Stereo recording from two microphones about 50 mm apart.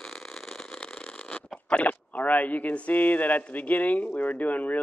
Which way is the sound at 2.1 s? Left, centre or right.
Left.